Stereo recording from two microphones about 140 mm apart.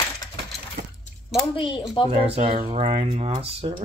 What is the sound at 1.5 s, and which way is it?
Speech, 35° left (ahead or behind).